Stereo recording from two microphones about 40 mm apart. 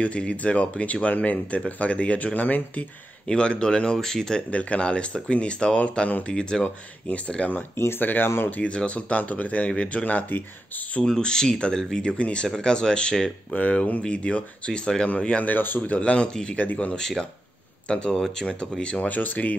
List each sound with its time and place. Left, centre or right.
0.0 s speech: left
3.3 s speech: left
4.5 s speech: left
6.6 s speech: left
8.0 s speech: left
8.6 s speech: left
11.1 s speech: centre
13.5 s speech: left
14.0 s speech: left
15.4 s speech: left
16.0 s speech: left
17.8 s speech: left
18.1 s speech: centre
18.9 s speech: left